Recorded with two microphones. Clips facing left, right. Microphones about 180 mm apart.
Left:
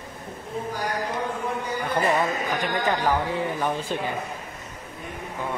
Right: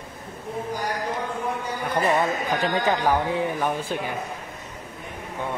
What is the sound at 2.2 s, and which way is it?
Speech, 20° right (ahead or behind).